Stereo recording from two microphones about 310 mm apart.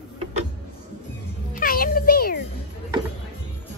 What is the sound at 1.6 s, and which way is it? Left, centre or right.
Music, left.